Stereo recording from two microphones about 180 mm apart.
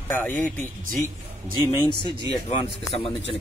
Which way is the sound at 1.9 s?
25° left (ahead or behind).